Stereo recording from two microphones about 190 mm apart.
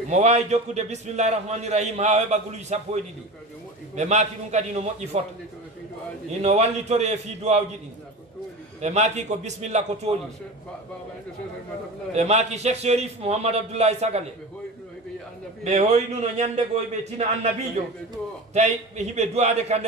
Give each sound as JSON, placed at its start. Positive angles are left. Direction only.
{"t": 0.1, "sound": "a man's voice", "side_deg": -35}
{"t": 6.4, "sound": "a man's voice", "side_deg": -35}
{"t": 8.8, "sound": "a man's voice", "side_deg": -35}
{"t": 12.1, "sound": "a man's voice", "side_deg": -35}
{"t": 15.6, "sound": "a man's voice", "side_deg": -40}
{"t": 18.5, "sound": "a man's voice", "side_deg": -35}